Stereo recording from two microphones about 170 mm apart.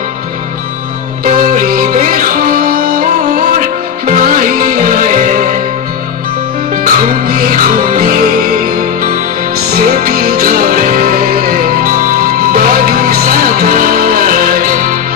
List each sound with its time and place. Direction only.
1.2 s music: 50° right (ahead or behind)
4.1 s music: 55° right (ahead or behind)
6.8 s music: 55° right (ahead or behind)